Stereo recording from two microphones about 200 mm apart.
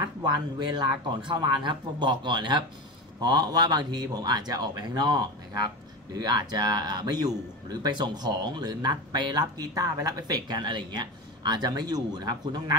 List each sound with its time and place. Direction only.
0.2 s speech: 20° right (ahead or behind)